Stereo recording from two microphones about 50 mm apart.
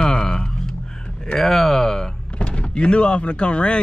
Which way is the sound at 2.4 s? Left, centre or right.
Left.